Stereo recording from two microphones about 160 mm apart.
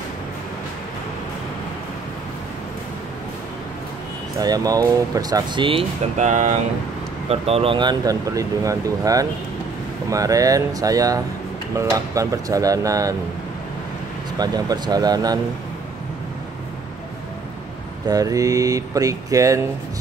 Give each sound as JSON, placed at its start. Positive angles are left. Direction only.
{"t": 4.4, "sound": "speech", "side_deg": -25}
{"t": 6.1, "sound": "speech", "side_deg": -50}
{"t": 7.2, "sound": "speech", "side_deg": -40}
{"t": 14.4, "sound": "speech", "side_deg": -25}
{"t": 18.0, "sound": "speech", "side_deg": -20}